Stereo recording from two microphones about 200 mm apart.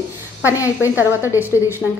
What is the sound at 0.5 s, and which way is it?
Speech, 15° left (ahead or behind).